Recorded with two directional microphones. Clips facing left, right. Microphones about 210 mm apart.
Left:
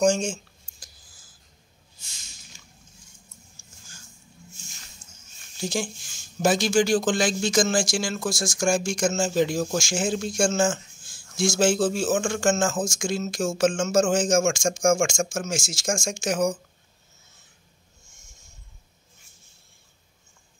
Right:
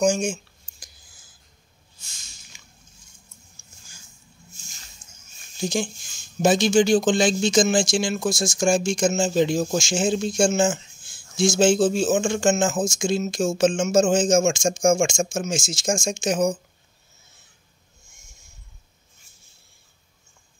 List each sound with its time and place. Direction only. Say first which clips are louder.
0.0 s speech: even; 10° right (ahead or behind)
5.0 s a sound: left 1 dB; centre (ahead or behind)
5.6 s speech: right 3 dB; 20° right (ahead or behind)